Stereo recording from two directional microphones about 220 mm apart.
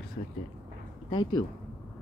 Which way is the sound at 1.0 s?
20° left (ahead or behind).